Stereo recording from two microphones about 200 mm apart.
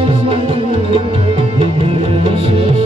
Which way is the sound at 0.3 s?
25° right (ahead or behind).